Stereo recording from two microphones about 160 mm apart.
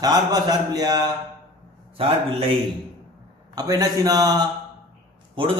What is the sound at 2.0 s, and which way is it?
Speech, 35° right (ahead or behind).